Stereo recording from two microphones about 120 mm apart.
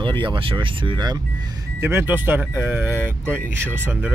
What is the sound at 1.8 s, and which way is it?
Speech, 15° right (ahead or behind).